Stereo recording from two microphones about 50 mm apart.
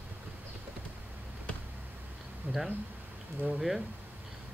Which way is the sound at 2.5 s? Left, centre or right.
Right.